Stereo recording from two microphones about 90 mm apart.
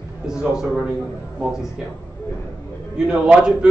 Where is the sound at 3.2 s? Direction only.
10° right (ahead or behind).